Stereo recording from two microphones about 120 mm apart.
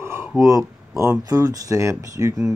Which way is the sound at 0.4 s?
25° right (ahead or behind).